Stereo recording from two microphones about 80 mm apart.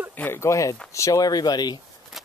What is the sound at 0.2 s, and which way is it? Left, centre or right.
Speech, left.